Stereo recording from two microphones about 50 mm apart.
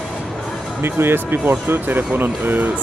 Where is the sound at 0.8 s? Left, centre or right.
Right.